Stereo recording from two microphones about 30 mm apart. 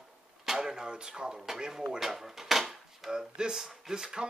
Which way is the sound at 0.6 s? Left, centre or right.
Right.